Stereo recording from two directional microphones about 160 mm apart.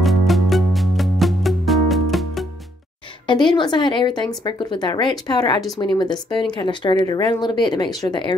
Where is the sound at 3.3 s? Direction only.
30° left (ahead or behind).